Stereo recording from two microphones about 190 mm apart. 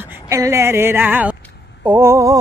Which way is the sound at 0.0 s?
15° right (ahead or behind).